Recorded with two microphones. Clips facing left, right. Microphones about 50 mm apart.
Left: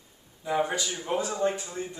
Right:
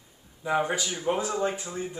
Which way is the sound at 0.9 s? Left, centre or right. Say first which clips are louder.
Right 2 dB; right.